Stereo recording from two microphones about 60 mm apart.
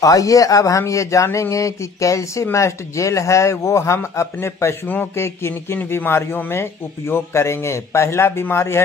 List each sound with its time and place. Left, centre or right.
0.0 s a man's voice: left